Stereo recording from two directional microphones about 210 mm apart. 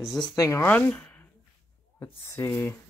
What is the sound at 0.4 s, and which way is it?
Speech, 10° left (ahead or behind).